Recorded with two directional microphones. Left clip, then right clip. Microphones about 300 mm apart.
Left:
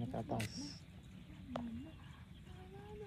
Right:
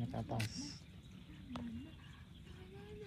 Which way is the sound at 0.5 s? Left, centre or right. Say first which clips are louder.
Right 1 dB; centre.